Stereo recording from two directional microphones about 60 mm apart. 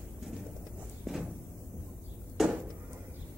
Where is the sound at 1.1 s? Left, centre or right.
Centre.